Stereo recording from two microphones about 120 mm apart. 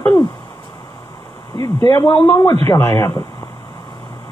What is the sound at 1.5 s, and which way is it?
Speech, 30° left (ahead or behind).